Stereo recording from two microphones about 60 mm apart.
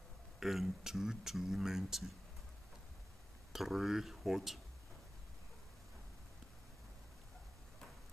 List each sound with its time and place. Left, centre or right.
0.4 s speech: centre
3.5 s speech: centre